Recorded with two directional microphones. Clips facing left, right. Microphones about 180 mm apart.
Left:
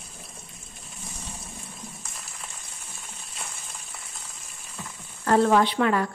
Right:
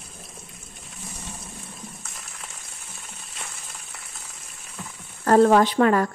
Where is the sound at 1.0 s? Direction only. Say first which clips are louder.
Right 2 dB; centre (ahead or behind).